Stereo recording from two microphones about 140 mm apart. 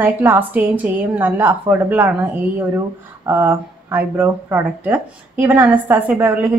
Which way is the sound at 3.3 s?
15° right (ahead or behind).